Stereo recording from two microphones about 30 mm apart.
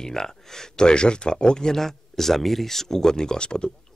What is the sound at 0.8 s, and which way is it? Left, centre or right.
Speech, left.